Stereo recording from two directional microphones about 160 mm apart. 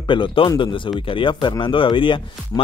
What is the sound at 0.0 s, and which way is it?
Speech, 30° left (ahead or behind).